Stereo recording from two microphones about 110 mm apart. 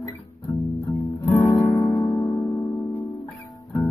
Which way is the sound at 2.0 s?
30° left (ahead or behind).